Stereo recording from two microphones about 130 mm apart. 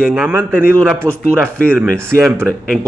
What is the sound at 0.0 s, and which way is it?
Speech, centre (ahead or behind).